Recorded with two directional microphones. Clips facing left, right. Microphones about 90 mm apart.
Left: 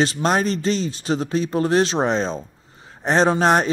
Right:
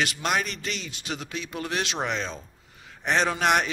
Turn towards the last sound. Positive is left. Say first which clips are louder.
# left 7 dB
turn(degrees=35)  # may be behind; listen again after turning